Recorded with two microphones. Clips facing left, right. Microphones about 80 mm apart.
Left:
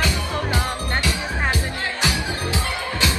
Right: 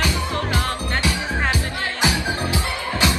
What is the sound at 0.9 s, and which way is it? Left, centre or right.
Music, right.